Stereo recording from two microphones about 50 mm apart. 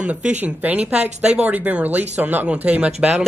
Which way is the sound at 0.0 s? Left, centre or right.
Right.